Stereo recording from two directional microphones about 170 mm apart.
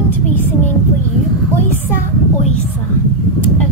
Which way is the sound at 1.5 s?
10° left (ahead or behind).